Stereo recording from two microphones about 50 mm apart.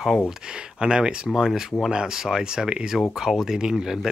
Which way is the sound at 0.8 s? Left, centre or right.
Centre.